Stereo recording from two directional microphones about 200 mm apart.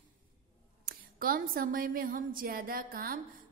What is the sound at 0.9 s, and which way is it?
A woman's voice, 45° right (ahead or behind).